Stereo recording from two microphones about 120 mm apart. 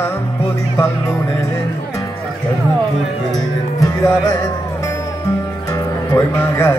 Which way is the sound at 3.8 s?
25° left (ahead or behind).